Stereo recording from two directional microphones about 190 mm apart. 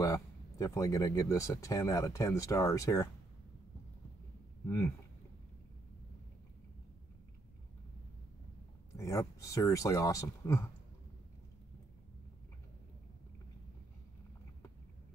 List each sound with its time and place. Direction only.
0.0 s speech: 15° left (ahead or behind)
4.6 s speech: 15° left (ahead or behind)
8.9 s speech: 15° left (ahead or behind)